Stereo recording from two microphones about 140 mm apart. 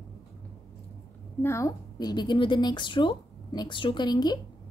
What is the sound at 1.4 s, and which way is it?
A woman's voice, 20° left (ahead or behind).